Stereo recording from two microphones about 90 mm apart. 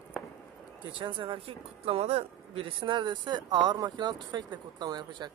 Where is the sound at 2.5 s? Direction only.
70° right (ahead or behind); by 5.3 s 50° right (ahead or behind).